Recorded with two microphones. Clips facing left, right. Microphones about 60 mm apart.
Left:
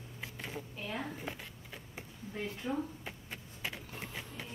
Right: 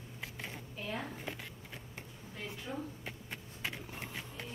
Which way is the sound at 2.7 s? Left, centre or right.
Left.